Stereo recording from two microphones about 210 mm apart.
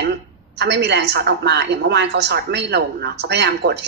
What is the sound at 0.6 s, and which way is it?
A woman's voice, 55° right (ahead or behind).